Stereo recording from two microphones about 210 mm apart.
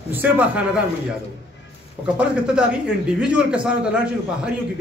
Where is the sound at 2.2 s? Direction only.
5° right (ahead or behind).